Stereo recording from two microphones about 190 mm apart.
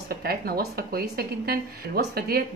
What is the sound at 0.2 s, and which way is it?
A woman's voice, 55° right (ahead or behind).